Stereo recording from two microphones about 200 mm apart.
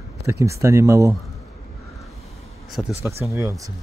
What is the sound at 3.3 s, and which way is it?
Speech, 15° right (ahead or behind).